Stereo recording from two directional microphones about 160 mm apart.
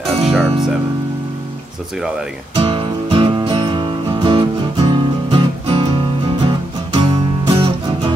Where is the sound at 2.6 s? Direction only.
35° right (ahead or behind).